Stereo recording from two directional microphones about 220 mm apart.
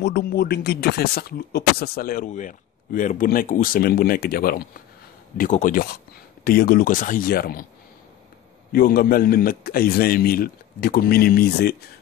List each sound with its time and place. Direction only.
0.0 s speech: 45° left (ahead or behind)
8.7 s speech: 40° left (ahead or behind)